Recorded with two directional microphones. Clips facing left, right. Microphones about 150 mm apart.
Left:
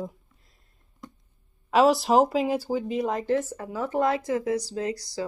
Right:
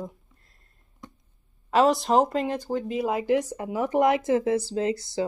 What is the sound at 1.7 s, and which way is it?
Speech, centre (ahead or behind).